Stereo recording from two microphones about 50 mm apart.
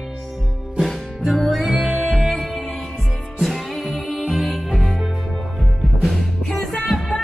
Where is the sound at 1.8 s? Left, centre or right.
Right.